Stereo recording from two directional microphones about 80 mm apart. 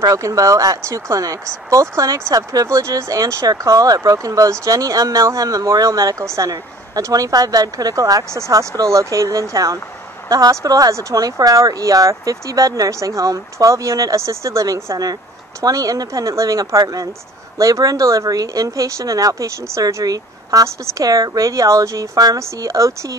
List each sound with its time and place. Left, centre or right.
0.0 s speech: right